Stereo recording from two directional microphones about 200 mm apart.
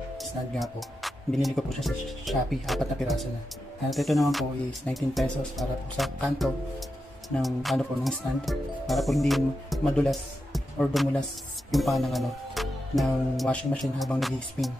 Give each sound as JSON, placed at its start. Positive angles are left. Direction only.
{"t": 0.2, "sound": "speech", "side_deg": 0}